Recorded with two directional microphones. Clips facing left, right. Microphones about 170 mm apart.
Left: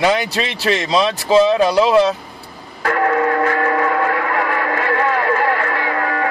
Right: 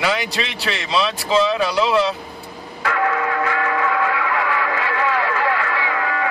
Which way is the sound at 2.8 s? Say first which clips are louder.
Left 4 dB; 40° left (ahead or behind).